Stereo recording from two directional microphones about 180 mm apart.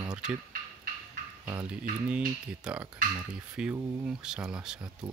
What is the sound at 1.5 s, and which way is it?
Speech, 10° right (ahead or behind).